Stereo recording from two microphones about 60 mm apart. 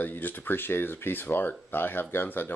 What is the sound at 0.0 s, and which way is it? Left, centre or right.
Speech, left.